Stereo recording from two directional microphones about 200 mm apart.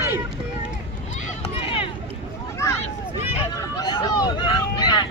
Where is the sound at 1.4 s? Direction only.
25° left (ahead or behind).